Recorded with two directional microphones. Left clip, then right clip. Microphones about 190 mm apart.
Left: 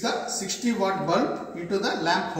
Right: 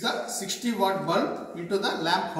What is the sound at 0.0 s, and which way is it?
Speech, 15° left (ahead or behind).